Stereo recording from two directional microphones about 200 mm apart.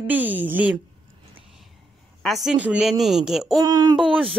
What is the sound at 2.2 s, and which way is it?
Speech, centre (ahead or behind).